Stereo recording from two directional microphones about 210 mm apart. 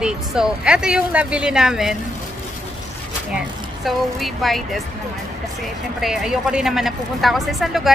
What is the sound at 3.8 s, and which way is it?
Speech, centre (ahead or behind).